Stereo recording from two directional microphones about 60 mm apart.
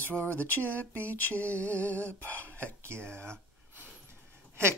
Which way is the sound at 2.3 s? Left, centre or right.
Left.